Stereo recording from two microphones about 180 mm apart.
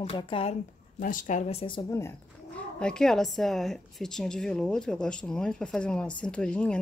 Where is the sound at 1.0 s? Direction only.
45° left (ahead or behind); by 1.8 s 30° left (ahead or behind).